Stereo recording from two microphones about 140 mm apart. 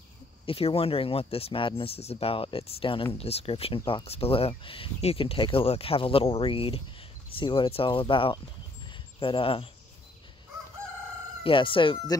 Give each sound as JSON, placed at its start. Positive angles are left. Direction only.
{"t": 0.5, "sound": "speech", "side_deg": 45}
{"t": 11.4, "sound": "speech", "side_deg": 40}